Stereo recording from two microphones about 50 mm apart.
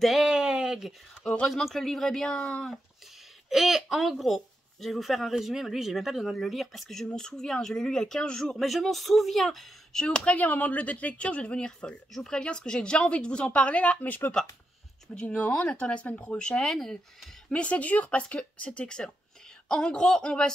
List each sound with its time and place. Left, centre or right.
0.2 s a sound: centre
1.5 s a woman's voice: centre
2.3 s speech: centre
3.4 s a woman's voice: centre
7.2 s speech: centre
8.5 s a woman's voice: centre
10.0 s speech: left
10.4 s speech: left; by 16.7 s centre
16.7 s a woman's voice: centre
17.5 s speech: left